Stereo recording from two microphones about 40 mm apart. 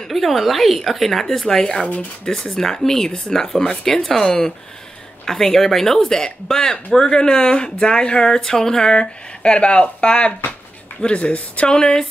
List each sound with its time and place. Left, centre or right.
0.1 s a woman's voice: centre